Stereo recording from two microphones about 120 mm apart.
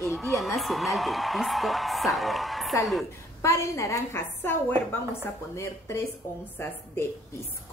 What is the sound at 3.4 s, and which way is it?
A woman's voice, 25° left (ahead or behind).